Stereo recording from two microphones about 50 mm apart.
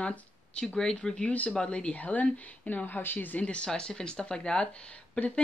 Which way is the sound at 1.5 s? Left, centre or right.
Centre.